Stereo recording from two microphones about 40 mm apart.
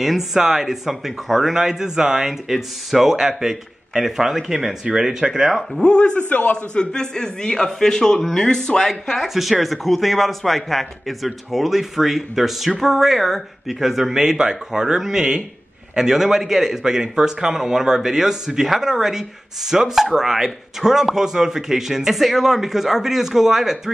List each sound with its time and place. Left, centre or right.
0.0 s a man's voice: centre
1.5 s a man's voice: centre
5.8 s a man's voice: left
6.1 s a man's voice: left
6.5 s a man's voice: left
9.3 s a man's voice: centre